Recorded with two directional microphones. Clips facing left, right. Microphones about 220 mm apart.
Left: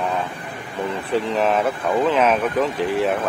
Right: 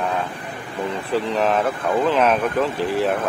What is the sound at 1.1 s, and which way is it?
Speech, 5° left (ahead or behind).